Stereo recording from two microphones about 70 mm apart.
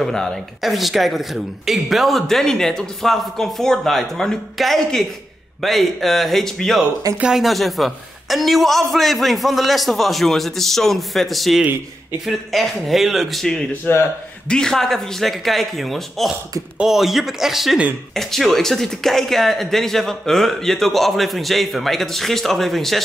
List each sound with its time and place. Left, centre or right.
0.0 s speech: centre
7.2 s speech: centre
7.4 s speech: centre
13.9 s a man's voice: left
14.5 s speech: centre